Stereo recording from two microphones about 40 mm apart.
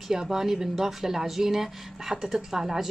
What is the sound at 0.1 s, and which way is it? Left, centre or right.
Speech, centre.